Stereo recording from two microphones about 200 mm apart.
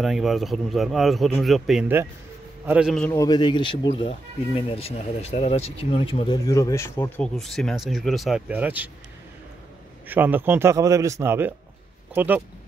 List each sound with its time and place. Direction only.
0.0 s speech: centre (ahead or behind)
3.1 s speech: 20° left (ahead or behind)
7.3 s speech: centre (ahead or behind)
10.0 s a man's voice: 10° right (ahead or behind)